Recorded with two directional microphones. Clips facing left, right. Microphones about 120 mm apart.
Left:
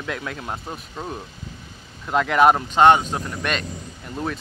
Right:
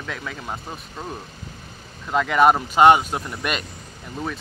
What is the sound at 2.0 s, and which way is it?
Speech, centre (ahead or behind).